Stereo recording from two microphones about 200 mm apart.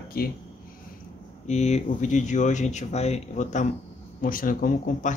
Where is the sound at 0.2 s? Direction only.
50° left (ahead or behind).